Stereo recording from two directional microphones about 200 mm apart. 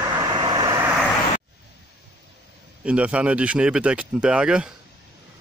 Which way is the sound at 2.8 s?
5° right (ahead or behind).